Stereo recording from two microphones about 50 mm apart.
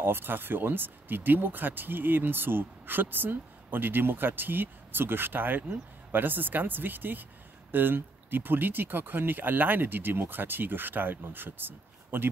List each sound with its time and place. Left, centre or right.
0.0 s speech: right